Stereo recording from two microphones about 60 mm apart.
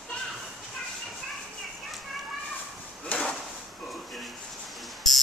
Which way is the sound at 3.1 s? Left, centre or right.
Centre.